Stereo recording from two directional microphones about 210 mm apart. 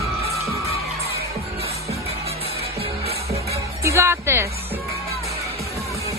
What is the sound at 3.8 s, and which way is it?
Music, 15° right (ahead or behind).